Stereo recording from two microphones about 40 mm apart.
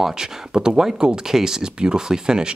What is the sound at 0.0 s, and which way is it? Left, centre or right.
Speech, centre.